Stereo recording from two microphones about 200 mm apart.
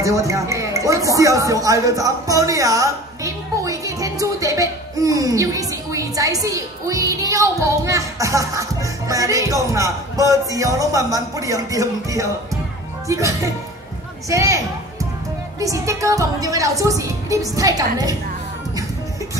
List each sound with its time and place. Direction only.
0.0 s a woman's voice: 15° right (ahead or behind)